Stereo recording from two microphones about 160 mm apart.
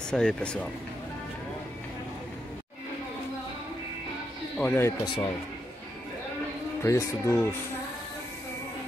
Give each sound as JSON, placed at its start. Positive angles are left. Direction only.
{"t": 0.1, "sound": "speech", "side_deg": 5}
{"t": 4.6, "sound": "speech", "side_deg": 15}
{"t": 5.0, "sound": "a man's voice", "side_deg": 30}
{"t": 6.8, "sound": "speech", "side_deg": 20}